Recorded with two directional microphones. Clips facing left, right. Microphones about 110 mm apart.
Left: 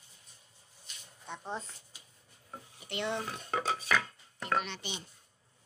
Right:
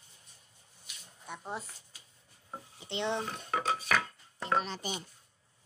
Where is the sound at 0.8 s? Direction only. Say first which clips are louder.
Even; 10° right (ahead or behind).